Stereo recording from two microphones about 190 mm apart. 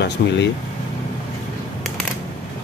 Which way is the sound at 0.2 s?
55° left (ahead or behind).